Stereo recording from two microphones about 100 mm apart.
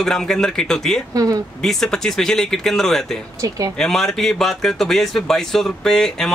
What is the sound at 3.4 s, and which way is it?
Speech, 35° right (ahead or behind).